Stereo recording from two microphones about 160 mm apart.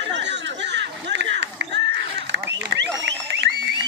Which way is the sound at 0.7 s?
90° right.